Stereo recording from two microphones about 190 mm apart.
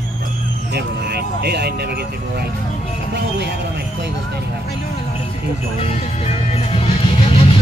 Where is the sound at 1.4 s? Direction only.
55° right (ahead or behind).